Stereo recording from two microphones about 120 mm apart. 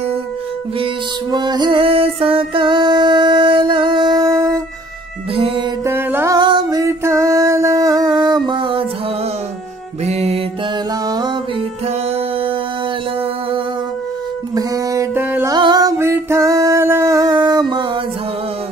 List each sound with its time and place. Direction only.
1.3 s music: 35° right (ahead or behind)
5.3 s music: 50° right (ahead or behind)
5.9 s music: 20° right (ahead or behind)
6.3 s music: 35° right (ahead or behind)
6.8 s music: 25° right (ahead or behind); by 8.8 s 45° right (ahead or behind)
10.0 s music: 60° right (ahead or behind)
11.1 s music: 35° right (ahead or behind)
14.5 s music: 30° right (ahead or behind)